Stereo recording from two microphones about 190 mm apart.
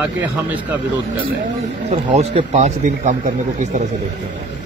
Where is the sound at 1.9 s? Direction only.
35° right (ahead or behind).